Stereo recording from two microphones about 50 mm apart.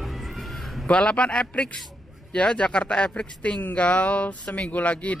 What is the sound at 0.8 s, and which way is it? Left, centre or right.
Speech, left.